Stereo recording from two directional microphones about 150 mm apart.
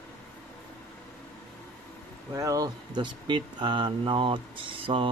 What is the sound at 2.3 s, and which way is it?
Speech, 20° right (ahead or behind).